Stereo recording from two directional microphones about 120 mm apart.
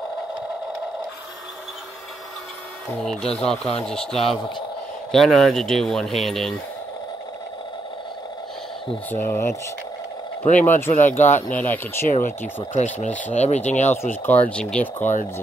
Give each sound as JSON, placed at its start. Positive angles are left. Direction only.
{"t": 3.0, "sound": "speech", "side_deg": 5}
{"t": 9.1, "sound": "speech", "side_deg": 20}
{"t": 10.4, "sound": "speech", "side_deg": 90}
{"t": 10.7, "sound": "speech", "side_deg": 15}
{"t": 12.1, "sound": "speech", "side_deg": 90}
{"t": 13.3, "sound": "speech", "side_deg": 70}
{"t": 14.2, "sound": "speech", "side_deg": 10}